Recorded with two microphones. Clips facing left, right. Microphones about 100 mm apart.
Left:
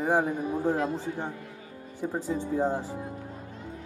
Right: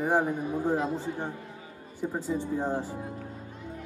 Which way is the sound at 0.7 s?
15° right (ahead or behind).